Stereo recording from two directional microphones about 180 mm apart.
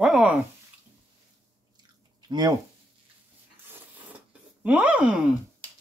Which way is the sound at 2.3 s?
20° right (ahead or behind).